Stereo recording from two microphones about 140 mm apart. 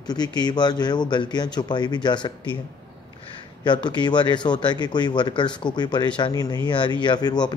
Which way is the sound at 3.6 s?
30° left (ahead or behind).